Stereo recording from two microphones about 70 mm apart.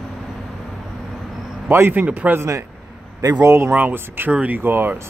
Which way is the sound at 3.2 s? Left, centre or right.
Right.